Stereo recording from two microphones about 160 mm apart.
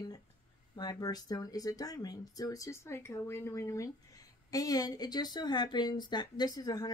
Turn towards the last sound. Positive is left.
turn(degrees=25)  # may be behind; listen again after turning